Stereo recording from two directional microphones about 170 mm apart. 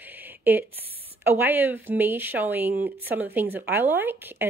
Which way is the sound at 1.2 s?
10° right (ahead or behind).